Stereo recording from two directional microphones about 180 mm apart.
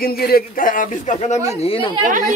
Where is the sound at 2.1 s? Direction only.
45° right (ahead or behind).